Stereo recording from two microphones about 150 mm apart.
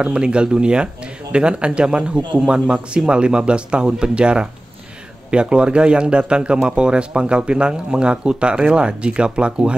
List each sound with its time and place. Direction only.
0.0 s speech: 5° right (ahead or behind)